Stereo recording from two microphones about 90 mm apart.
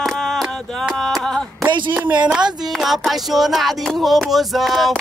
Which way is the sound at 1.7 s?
60° right (ahead or behind).